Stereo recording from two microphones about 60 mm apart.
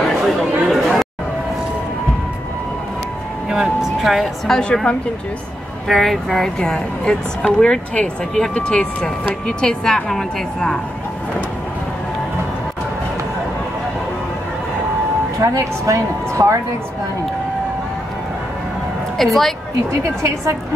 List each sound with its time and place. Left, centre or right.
0.0 s chatter: centre
3.4 s a sound: centre
4.0 s speech: centre
5.9 s speech: centre
15.4 s a woman's voice: right
19.1 s a woman's voice: centre
19.9 s a woman's voice: right